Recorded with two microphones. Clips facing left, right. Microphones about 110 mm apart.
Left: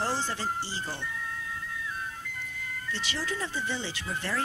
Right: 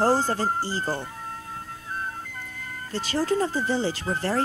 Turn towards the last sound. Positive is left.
turn(degrees=-40)  # may be behind; listen again after turning